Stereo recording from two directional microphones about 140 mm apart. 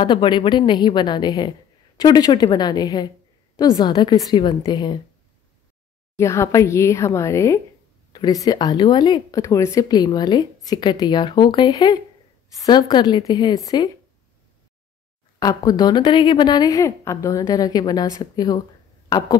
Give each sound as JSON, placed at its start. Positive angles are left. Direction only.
{"t": 0.0, "sound": "a woman's voice", "side_deg": 35}
{"t": 6.1, "sound": "a woman's voice", "side_deg": 20}
{"t": 15.4, "sound": "speech", "side_deg": 25}